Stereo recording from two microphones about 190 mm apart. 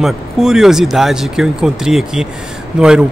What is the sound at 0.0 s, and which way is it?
A man's voice, 5° right (ahead or behind).